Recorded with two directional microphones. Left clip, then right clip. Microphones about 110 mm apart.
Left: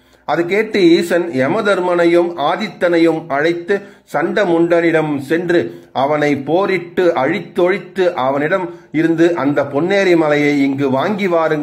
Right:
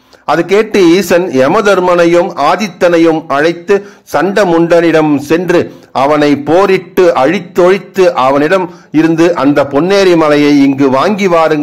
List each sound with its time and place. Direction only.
0.3 s a man's voice: 30° right (ahead or behind)